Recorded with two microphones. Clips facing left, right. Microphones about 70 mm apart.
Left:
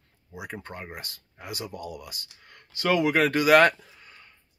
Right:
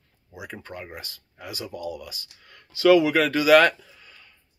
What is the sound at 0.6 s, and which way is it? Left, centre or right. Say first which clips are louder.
Speech: right 1 dB; left.